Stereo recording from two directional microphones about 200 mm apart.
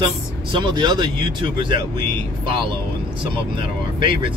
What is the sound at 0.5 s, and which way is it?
Speech, 25° right (ahead or behind).